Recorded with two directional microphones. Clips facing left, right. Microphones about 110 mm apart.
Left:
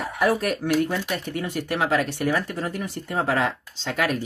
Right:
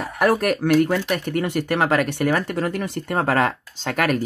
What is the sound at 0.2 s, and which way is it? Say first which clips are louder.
Speech: right 4 dB; 65° right (ahead or behind).